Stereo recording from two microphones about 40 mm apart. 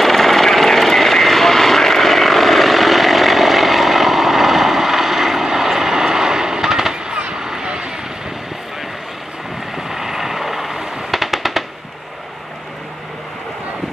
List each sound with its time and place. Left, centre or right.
0.0 s vehicle: centre
9.8 s vehicle: centre